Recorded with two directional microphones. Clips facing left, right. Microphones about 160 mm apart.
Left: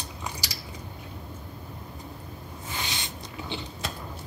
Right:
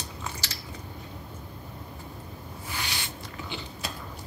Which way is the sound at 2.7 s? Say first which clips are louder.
Left 1 dB; 20° left (ahead or behind).